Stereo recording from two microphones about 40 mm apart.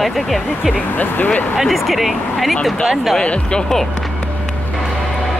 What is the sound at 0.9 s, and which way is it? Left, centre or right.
Speech, left.